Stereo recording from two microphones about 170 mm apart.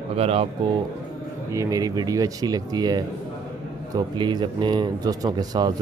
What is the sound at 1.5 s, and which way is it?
Speech, 20° right (ahead or behind).